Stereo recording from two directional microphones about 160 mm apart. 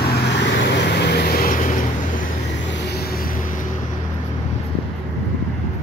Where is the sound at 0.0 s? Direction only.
85° left; by 1.7 s 60° left (ahead or behind).